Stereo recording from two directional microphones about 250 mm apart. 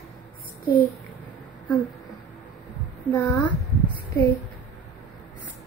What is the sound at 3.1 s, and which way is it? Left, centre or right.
Speech, centre.